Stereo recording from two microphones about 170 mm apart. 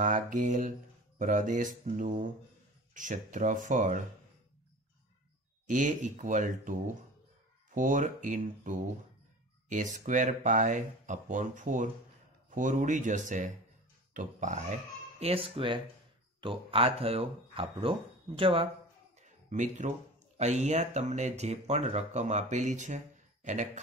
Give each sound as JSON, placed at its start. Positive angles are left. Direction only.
{"t": 0.0, "sound": "speech", "side_deg": -50}
{"t": 5.7, "sound": "speech", "side_deg": -45}
{"t": 15.1, "sound": "speech", "side_deg": -35}
{"t": 19.2, "sound": "a sound", "side_deg": -45}
{"t": 20.3, "sound": "speech", "side_deg": -40}